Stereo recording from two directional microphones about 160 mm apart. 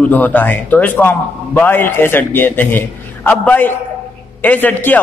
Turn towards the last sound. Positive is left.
turn(degrees=10)  # may be behind; listen again after turning